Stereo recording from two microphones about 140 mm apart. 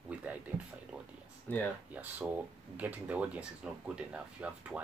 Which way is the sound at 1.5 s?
15° left (ahead or behind).